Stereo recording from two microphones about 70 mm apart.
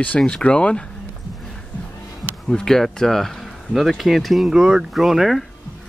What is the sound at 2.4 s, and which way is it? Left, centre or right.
Speech, centre.